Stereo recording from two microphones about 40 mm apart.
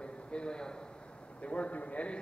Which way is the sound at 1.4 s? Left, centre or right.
Left.